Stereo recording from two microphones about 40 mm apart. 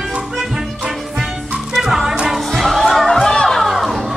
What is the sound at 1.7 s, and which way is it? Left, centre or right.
Music, centre.